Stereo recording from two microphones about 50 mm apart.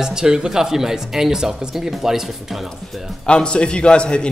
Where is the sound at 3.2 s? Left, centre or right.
Centre.